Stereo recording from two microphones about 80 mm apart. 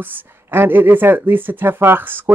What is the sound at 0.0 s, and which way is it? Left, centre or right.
Speech, right.